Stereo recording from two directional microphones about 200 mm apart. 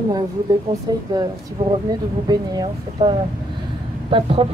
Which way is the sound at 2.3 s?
20° right (ahead or behind).